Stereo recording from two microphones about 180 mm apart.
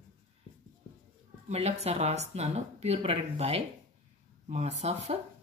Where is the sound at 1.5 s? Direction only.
35° right (ahead or behind).